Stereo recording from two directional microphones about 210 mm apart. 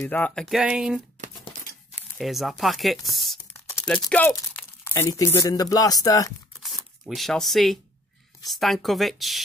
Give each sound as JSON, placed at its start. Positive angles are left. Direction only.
{"t": 0.0, "sound": "speech", "side_deg": 5}
{"t": 3.6, "sound": "a sound", "side_deg": 10}
{"t": 4.1, "sound": "speech", "side_deg": 10}
{"t": 6.6, "sound": "speech", "side_deg": 0}